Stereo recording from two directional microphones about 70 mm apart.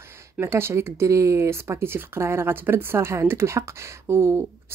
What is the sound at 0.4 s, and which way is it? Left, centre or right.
Speech, right.